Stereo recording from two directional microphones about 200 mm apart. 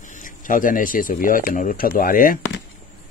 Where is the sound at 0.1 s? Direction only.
40° left (ahead or behind).